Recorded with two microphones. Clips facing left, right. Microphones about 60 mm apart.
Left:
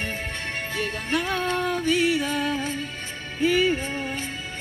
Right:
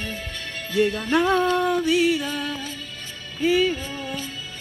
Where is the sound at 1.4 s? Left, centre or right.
Left.